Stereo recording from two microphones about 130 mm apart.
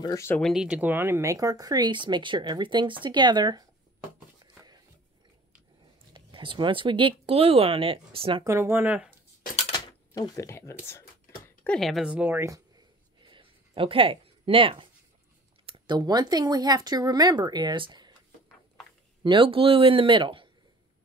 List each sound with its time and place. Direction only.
0.0 s speech: 25° left (ahead or behind)
0.4 s speech: 5° right (ahead or behind); by 3.6 s 35° right (ahead or behind)
4.5 s a sound: 30° right (ahead or behind)
6.1 s speech: 40° right (ahead or behind)
8.5 s speech: 20° right (ahead or behind)
9.8 s speech: 30° left (ahead or behind)
11.4 s a sound: 10° left (ahead or behind)
11.8 s speech: 5° right (ahead or behind)
12.4 s a sound: 25° right (ahead or behind)
13.2 s a sound: 40° right (ahead or behind)
15.6 s speech: 40° right (ahead or behind)
19.2 s speech: 40° right (ahead or behind)